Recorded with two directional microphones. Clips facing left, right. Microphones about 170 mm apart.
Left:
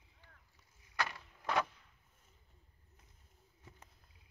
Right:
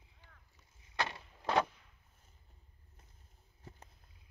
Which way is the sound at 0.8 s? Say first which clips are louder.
Right 2 dB; 25° right (ahead or behind).